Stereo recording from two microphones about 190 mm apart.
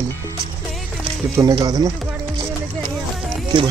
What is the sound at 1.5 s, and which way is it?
Speech, 20° right (ahead or behind).